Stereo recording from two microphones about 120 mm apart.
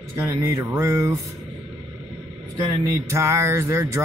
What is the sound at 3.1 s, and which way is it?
Speech, 25° right (ahead or behind).